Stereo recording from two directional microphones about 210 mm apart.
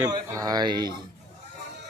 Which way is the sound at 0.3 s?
15° right (ahead or behind).